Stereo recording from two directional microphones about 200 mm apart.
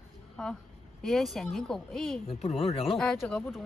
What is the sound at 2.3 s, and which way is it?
Speech, 30° left (ahead or behind).